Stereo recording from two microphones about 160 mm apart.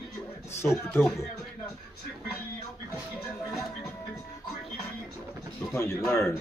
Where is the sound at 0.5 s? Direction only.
15° left (ahead or behind).